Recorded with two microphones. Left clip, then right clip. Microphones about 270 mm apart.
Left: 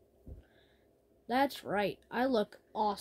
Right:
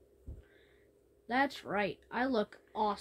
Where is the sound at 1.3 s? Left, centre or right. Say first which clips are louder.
Left 1 dB; left.